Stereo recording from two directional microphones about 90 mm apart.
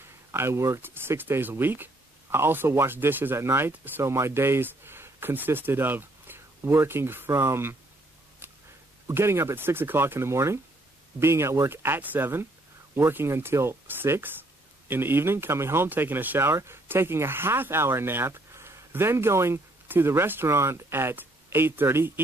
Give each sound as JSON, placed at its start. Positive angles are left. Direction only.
{"t": 0.0, "sound": "speech", "side_deg": -30}
{"t": 8.4, "sound": "a sound", "side_deg": -20}
{"t": 9.0, "sound": "speech", "side_deg": -30}